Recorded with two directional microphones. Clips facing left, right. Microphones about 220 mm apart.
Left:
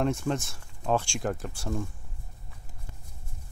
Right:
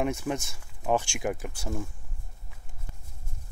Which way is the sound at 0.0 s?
10° right (ahead or behind).